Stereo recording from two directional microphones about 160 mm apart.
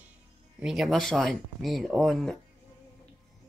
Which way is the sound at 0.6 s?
5° right (ahead or behind).